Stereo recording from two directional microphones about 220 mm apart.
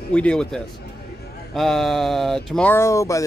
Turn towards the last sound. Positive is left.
turn(degrees=15)  # may be behind; listen again after turning